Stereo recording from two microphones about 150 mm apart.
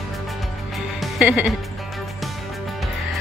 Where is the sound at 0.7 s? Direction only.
5° right (ahead or behind).